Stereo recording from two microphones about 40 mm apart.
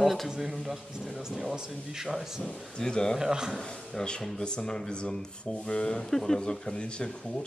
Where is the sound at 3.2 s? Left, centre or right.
Centre.